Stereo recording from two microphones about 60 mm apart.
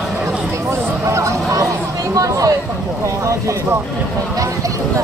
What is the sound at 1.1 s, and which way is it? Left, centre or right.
Music, right.